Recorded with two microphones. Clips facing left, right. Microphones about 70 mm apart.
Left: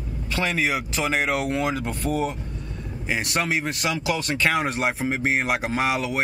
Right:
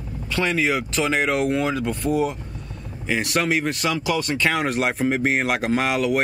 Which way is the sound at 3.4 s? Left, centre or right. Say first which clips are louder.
Right 3 dB; centre.